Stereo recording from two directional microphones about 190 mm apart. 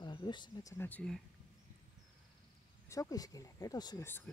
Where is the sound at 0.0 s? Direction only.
25° left (ahead or behind).